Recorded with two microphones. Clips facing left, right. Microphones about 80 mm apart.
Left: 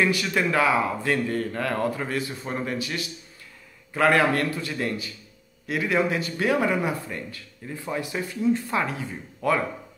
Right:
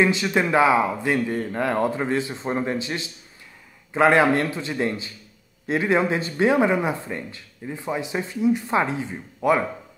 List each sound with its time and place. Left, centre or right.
0.0 s speech: right